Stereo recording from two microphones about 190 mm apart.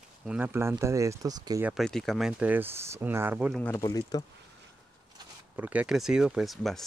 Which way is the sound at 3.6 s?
10° left (ahead or behind).